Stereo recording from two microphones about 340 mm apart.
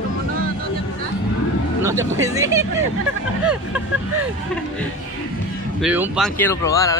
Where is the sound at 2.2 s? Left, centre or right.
Centre.